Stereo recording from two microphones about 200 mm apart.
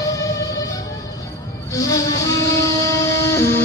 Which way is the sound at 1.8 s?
15° left (ahead or behind).